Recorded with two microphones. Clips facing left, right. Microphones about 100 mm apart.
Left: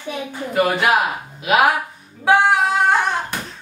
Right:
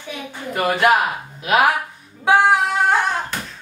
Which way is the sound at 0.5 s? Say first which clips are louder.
Right 1 dB; centre (ahead or behind).